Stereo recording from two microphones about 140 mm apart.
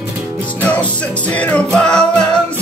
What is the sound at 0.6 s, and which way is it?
Music, 10° left (ahead or behind).